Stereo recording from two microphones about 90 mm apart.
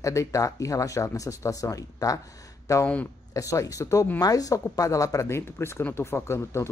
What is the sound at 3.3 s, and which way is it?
Speech, 40° left (ahead or behind).